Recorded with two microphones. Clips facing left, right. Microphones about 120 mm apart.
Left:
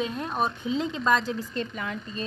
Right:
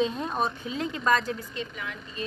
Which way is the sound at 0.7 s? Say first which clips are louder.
Left 2 dB; 20° left (ahead or behind).